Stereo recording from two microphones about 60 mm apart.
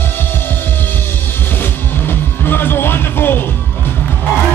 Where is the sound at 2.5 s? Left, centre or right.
Left.